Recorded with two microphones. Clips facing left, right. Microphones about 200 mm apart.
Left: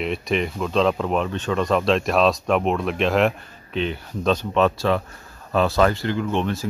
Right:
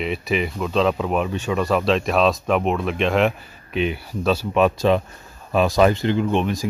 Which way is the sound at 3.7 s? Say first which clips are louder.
Right 2 dB; 10° right (ahead or behind).